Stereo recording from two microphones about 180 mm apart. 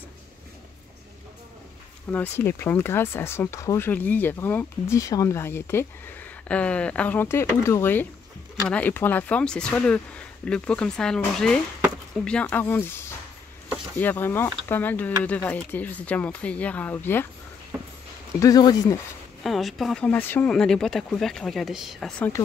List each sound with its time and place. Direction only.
2.0 s speech: 10° left (ahead or behind)
18.4 s speech: 20° left (ahead or behind)
19.4 s speech: centre (ahead or behind)